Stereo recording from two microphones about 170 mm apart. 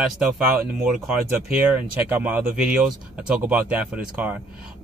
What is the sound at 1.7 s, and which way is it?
Speech, 10° right (ahead or behind).